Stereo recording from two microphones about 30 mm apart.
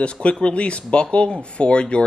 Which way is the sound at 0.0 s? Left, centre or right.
Left.